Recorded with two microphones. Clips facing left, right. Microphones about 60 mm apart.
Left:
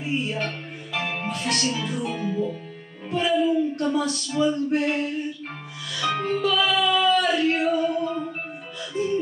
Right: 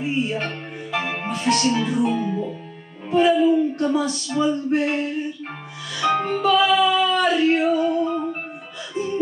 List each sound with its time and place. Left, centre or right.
0.0 s speech: centre
6.2 s music: centre
8.1 s music: centre
8.9 s music: centre